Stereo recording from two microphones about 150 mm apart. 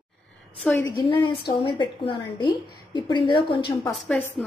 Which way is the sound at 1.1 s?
30° left (ahead or behind).